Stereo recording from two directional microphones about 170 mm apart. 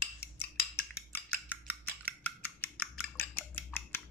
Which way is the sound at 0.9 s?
10° left (ahead or behind).